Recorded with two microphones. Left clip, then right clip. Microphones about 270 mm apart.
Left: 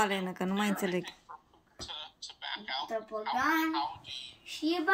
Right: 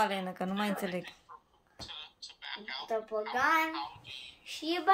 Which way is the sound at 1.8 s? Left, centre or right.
Left.